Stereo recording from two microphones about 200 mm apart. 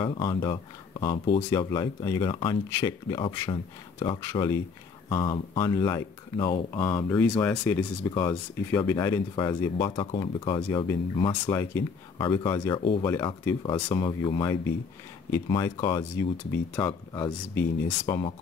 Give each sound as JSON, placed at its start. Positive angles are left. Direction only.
{"t": 0.0, "sound": "speech", "side_deg": 25}
{"t": 8.0, "sound": "speech", "side_deg": 20}
{"t": 11.4, "sound": "speech", "side_deg": 10}
{"t": 12.2, "sound": "speech", "side_deg": 25}
{"t": 16.5, "sound": "speech", "side_deg": 10}